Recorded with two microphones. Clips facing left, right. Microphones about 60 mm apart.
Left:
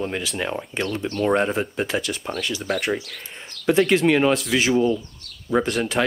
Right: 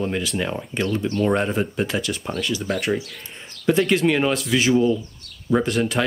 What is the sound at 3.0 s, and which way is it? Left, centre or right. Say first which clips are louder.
Speech: right 3 dB; left.